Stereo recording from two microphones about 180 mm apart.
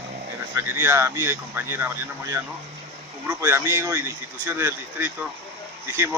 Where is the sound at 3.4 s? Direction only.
15° right (ahead or behind).